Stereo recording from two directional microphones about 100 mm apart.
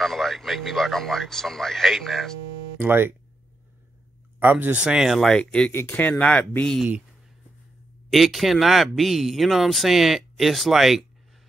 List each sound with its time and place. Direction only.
0.0 s speech: centre (ahead or behind)
2.8 s speech: 20° right (ahead or behind)
4.4 s speech: 20° right (ahead or behind); by 5.7 s 5° left (ahead or behind)
5.7 s speech: 20° left (ahead or behind)
8.1 s speech: centre (ahead or behind)